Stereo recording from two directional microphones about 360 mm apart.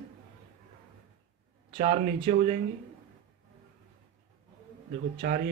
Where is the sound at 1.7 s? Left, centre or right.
Right.